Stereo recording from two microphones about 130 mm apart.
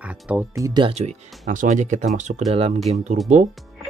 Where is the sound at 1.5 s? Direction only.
75° right (ahead or behind).